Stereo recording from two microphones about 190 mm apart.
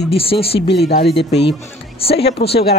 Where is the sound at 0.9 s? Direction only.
60° left (ahead or behind).